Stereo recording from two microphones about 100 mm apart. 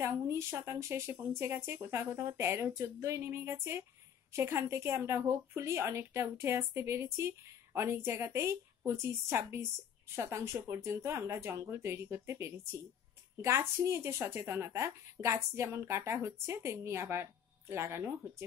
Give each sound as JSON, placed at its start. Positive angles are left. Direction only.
{"t": 0.0, "sound": "speech", "side_deg": -25}